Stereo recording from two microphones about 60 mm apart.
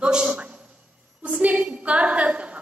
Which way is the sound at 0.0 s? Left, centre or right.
Centre.